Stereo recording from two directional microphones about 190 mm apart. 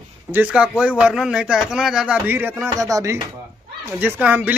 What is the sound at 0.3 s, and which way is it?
A man's voice, 5° right (ahead or behind).